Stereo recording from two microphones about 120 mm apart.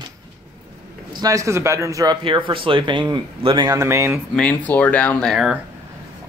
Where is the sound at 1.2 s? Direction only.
25° right (ahead or behind).